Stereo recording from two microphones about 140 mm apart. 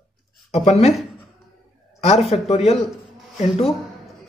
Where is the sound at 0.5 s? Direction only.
45° left (ahead or behind).